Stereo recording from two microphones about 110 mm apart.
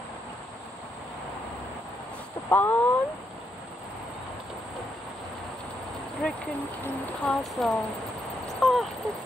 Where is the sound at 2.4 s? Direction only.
20° left (ahead or behind).